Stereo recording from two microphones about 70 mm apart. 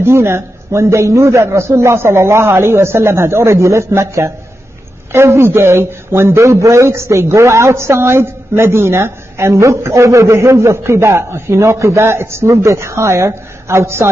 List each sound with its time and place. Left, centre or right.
0.0 s a man's voice: right
6.4 s a man's voice: right